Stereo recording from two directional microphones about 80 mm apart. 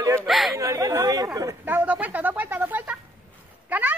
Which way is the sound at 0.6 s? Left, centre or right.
Right.